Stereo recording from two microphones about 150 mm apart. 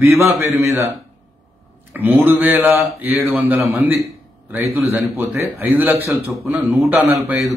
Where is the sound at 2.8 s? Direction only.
Centre (ahead or behind).